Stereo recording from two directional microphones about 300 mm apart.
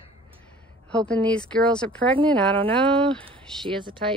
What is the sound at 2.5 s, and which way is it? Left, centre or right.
Speech, centre.